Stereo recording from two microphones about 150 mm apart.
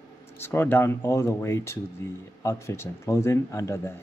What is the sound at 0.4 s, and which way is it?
Speech, 15° left (ahead or behind).